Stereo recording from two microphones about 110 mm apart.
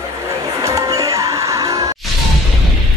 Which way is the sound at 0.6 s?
30° right (ahead or behind).